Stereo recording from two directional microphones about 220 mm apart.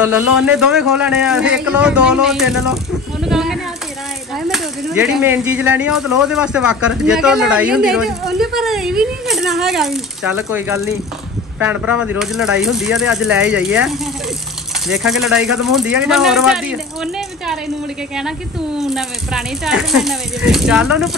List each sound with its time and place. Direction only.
0.0 s speech: 5° right (ahead or behind)
3.3 s a sound: centre (ahead or behind)
4.5 s speech: centre (ahead or behind)
18.8 s speech: centre (ahead or behind)